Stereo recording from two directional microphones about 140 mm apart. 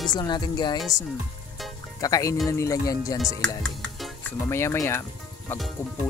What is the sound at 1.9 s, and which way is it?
Speech, 25° left (ahead or behind).